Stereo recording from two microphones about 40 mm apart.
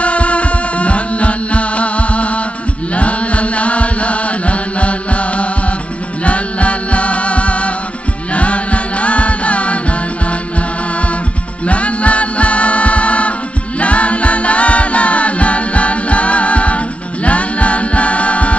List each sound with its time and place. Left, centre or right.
0.0 s music: left
2.9 s chant: left
6.2 s music: left
8.3 s chant: left
11.6 s music: left
13.7 s choir: left